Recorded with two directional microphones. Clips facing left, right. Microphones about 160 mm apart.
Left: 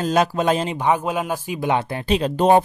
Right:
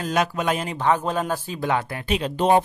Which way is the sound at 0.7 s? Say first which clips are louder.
Left 1 dB; 10° left (ahead or behind).